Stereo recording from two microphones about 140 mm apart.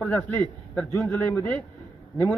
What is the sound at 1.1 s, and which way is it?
Speech, 15° left (ahead or behind).